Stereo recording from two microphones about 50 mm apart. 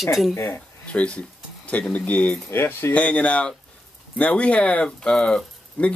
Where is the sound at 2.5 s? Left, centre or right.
Left.